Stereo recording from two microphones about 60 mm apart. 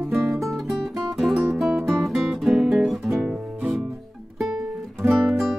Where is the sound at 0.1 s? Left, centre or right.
Centre.